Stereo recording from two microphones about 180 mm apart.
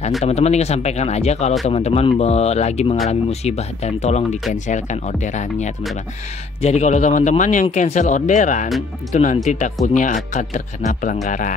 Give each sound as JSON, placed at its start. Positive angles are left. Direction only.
{"t": 0.2, "sound": "speech", "side_deg": 35}